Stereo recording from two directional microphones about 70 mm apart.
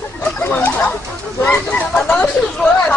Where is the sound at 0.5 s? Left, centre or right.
Left.